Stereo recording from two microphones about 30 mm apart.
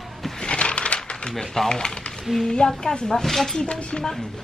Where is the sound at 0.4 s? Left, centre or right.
Left.